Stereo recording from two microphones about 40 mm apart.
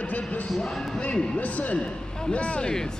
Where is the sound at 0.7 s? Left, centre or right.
Centre.